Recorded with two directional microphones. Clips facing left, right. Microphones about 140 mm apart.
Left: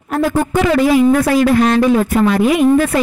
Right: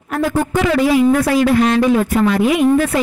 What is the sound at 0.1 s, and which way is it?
A man's voice, 45° left (ahead or behind).